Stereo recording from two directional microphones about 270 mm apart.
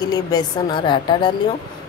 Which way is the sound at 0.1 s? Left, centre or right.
Centre.